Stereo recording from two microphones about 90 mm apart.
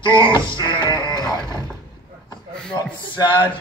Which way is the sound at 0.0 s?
60° left (ahead or behind).